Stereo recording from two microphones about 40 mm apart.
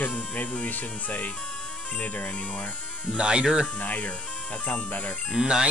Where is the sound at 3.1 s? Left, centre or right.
Right.